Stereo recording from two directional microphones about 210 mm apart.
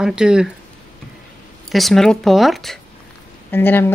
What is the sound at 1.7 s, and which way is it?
Speech, centre (ahead or behind).